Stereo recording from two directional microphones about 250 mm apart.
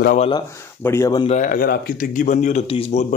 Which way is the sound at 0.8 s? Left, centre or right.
Centre.